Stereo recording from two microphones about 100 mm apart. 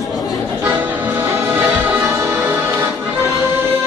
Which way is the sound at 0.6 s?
20° right (ahead or behind).